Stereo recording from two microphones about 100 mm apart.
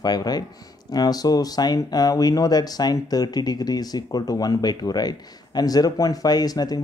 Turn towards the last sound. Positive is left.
turn(degrees=40)  # may be behind; listen again after turning